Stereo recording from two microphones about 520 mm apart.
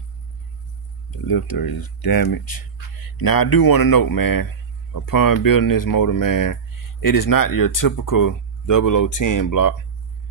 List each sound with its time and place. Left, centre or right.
1.1 s speech: left